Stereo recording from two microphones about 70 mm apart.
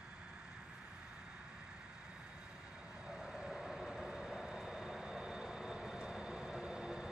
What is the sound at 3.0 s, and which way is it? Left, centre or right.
Vehicle, centre.